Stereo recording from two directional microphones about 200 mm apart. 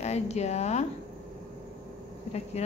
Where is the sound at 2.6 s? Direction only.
35° left (ahead or behind).